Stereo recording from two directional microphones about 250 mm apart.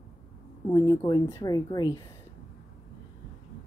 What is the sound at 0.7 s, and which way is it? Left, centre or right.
Speech, centre.